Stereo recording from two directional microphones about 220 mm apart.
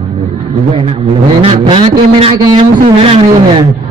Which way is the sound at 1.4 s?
25° right (ahead or behind).